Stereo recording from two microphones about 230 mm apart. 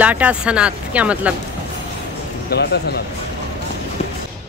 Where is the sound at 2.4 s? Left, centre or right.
Left.